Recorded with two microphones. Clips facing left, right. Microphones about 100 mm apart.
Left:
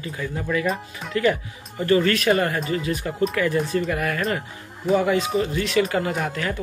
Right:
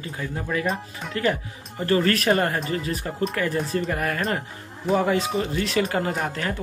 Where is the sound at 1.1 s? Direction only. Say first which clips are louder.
Left 3 dB; 35° right (ahead or behind).